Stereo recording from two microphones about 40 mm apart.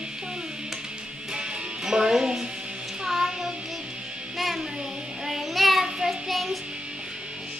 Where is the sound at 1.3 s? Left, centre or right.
Right.